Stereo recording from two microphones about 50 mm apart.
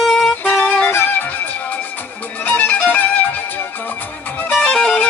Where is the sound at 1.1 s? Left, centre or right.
Left.